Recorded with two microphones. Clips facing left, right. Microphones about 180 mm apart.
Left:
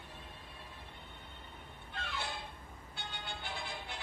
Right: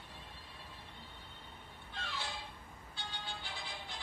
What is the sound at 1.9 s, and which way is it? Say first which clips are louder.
Music: left 2 dB; 60° left (ahead or behind).